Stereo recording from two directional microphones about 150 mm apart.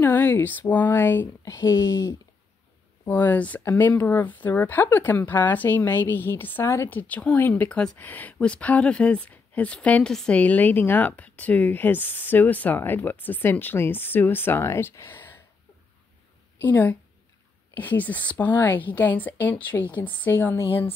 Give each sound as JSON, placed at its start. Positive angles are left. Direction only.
{"t": 0.0, "sound": "speech", "side_deg": 15}
{"t": 1.5, "sound": "speech", "side_deg": 25}
{"t": 3.1, "sound": "speech", "side_deg": 10}
{"t": 16.6, "sound": "speech", "side_deg": 10}